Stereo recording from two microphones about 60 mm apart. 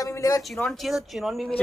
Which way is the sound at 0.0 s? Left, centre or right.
Left.